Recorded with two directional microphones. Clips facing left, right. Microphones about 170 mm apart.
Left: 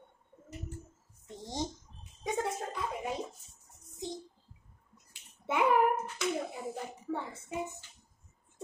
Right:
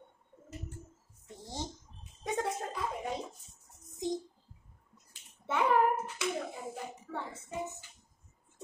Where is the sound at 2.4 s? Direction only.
Centre (ahead or behind).